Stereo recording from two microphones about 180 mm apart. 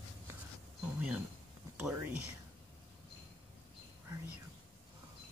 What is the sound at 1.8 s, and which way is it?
Speech, 10° right (ahead or behind).